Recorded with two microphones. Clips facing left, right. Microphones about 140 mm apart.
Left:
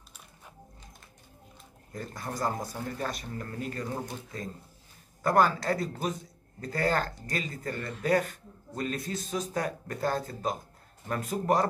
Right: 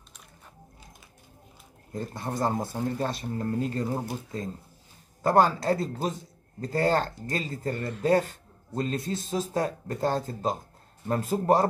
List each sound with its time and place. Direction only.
1.9 s speech: 25° right (ahead or behind)